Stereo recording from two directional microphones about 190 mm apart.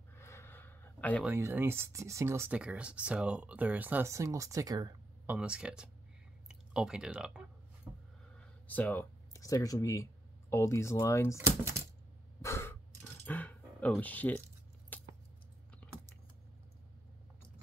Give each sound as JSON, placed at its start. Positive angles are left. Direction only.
{"t": 0.1, "sound": "gasp", "side_deg": 15}
{"t": 1.2, "sound": "speech", "side_deg": -10}
{"t": 5.2, "sound": "speech", "side_deg": -5}
{"t": 8.4, "sound": "speech", "side_deg": 10}
{"t": 12.4, "sound": "gasp", "side_deg": 15}
{"t": 13.3, "sound": "dog", "side_deg": 10}
{"t": 14.9, "sound": "keys jangling", "side_deg": 10}